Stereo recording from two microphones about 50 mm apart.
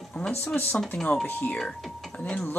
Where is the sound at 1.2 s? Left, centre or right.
Left.